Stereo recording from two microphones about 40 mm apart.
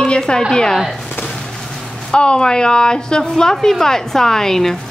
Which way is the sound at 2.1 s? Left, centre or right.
Left.